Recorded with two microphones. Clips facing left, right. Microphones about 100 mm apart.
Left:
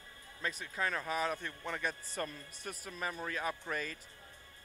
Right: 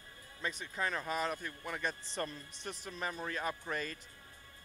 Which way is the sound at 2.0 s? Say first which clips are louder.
Even; 25° right (ahead or behind).